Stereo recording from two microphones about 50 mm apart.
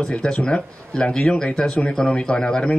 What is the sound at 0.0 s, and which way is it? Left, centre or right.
Speech, centre.